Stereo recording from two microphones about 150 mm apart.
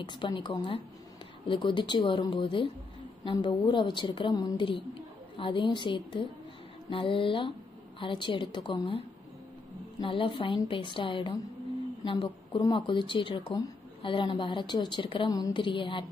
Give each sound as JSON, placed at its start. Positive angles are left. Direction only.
{"t": 0.0, "sound": "speech", "side_deg": 30}